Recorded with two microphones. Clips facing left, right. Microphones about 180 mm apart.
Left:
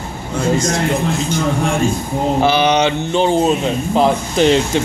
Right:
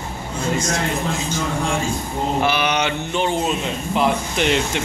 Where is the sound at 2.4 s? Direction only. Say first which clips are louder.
Left 6 dB; 30° left (ahead or behind).